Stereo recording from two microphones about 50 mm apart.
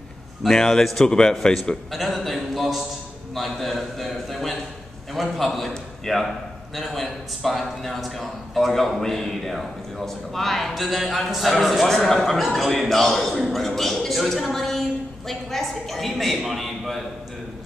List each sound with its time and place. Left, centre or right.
0.4 s a man's voice: centre